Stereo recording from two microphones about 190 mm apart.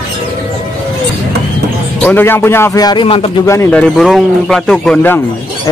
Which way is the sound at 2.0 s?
10° left (ahead or behind).